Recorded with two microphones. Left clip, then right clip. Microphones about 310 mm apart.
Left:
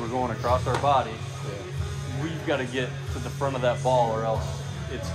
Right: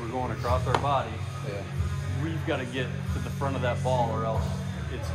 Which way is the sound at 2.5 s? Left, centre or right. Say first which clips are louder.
Left 4 dB; left.